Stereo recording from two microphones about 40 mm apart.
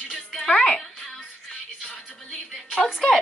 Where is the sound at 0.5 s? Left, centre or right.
Left.